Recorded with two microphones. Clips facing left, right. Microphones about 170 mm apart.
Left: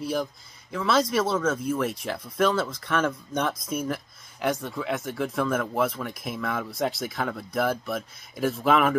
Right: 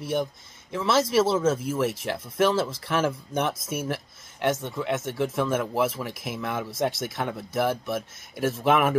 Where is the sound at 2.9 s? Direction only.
5° right (ahead or behind).